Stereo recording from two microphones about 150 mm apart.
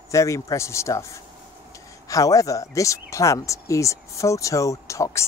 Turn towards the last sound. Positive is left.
turn(degrees=20)  # may be behind; listen again after turning